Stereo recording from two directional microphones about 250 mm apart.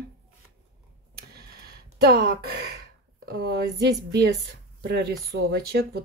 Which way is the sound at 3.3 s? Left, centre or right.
Right.